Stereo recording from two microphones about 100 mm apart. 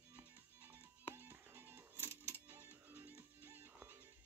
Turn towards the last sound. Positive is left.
turn(degrees=-20)  # may be behind; listen again after turning